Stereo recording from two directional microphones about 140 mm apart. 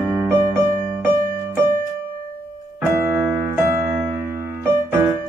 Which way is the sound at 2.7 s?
5° right (ahead or behind).